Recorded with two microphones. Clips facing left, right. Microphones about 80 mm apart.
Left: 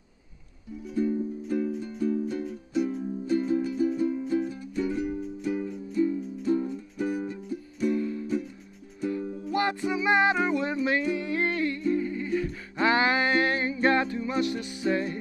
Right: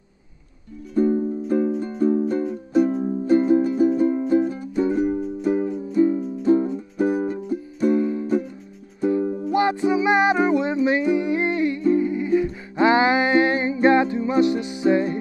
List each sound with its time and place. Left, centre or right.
0.9 s music: right
7.9 s music: right
9.5 s music: right